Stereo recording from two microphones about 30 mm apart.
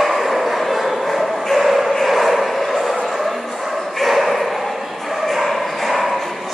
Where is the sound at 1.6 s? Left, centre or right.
Centre.